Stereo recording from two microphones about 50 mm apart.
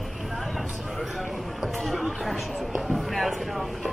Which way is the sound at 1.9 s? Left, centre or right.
Centre.